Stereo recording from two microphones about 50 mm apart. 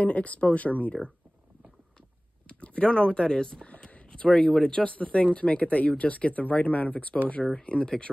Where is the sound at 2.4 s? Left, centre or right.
Left.